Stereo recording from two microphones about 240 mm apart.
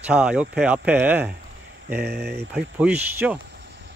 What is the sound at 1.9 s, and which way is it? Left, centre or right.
Speech, right.